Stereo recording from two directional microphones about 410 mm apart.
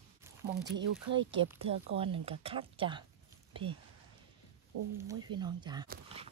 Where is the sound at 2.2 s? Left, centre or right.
Centre.